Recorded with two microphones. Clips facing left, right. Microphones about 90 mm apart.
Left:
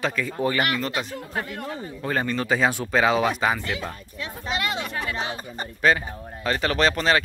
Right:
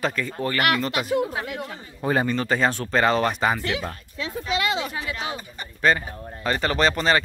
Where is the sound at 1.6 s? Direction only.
10° right (ahead or behind).